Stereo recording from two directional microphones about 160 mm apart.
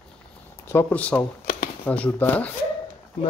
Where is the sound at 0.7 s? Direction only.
10° left (ahead or behind).